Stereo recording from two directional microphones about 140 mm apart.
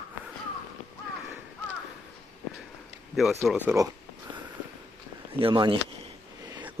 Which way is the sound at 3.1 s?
Centre (ahead or behind).